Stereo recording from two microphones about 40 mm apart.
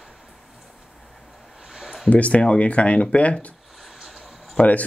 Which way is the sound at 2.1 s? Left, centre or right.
Left.